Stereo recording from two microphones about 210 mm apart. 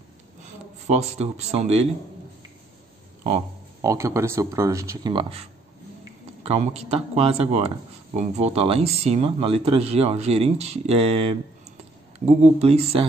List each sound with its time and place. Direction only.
0.8 s speech: 30° right (ahead or behind)
3.8 s speech: 15° right (ahead or behind)